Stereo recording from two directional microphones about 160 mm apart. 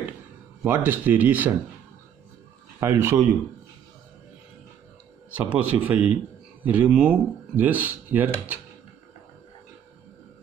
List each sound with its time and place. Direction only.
0.7 s speech: 10° right (ahead or behind)
2.8 s speech: 15° right (ahead or behind)
5.3 s speech: 10° right (ahead or behind)